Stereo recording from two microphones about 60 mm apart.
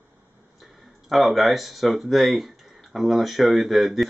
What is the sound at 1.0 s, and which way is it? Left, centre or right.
Speech, centre.